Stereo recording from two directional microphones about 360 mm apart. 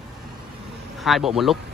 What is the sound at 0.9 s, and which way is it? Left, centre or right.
Speech, centre.